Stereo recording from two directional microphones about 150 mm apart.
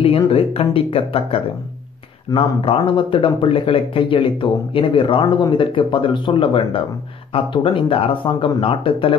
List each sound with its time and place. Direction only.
0.3 s speech: 40° left (ahead or behind)